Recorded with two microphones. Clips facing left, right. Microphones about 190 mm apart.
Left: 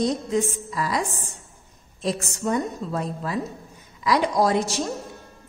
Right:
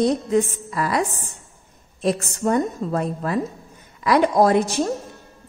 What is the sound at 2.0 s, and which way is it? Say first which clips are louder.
A woman's voice: right 5 dB; 55° right (ahead or behind).